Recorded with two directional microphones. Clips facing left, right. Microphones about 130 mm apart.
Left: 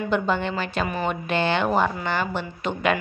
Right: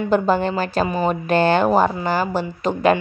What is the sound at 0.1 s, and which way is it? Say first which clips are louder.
A woman's voice: right 6 dB; 40° right (ahead or behind).